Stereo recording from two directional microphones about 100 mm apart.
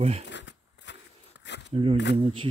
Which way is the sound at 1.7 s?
70° right (ahead or behind).